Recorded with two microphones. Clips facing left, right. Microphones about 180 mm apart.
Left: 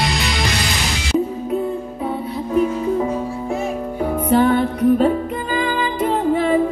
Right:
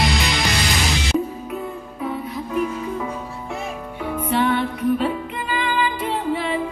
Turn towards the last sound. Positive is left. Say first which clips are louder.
# left 6 dB
turn(degrees=45)  # may be behind; listen again after turning